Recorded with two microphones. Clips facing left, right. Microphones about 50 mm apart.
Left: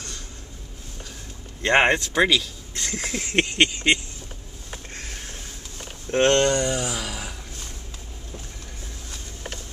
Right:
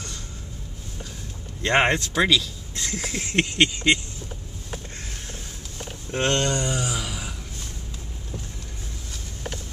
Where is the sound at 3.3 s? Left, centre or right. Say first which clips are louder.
Left 1 dB; left.